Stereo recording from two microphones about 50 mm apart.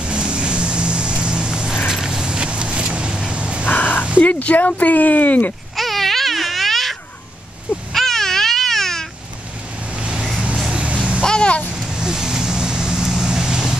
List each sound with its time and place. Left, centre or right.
0.0 s vehicle: right
3.6 s a sound: left
4.2 s speech: left
5.8 s a sound: centre
7.9 s baby cry: centre
9.9 s vehicle: right
10.5 s vehicle: centre
11.2 s a sound: centre
11.7 s vehicle: centre